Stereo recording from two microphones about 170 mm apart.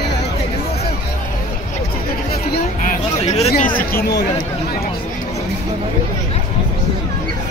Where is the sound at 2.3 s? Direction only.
45° left (ahead or behind).